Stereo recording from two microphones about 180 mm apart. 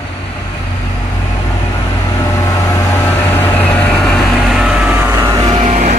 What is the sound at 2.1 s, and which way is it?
Vehicle, 15° left (ahead or behind).